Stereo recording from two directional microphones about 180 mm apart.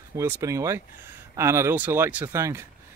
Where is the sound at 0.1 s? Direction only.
15° right (ahead or behind).